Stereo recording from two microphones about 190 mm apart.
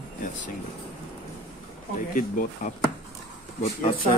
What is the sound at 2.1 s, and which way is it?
Speech, 50° left (ahead or behind).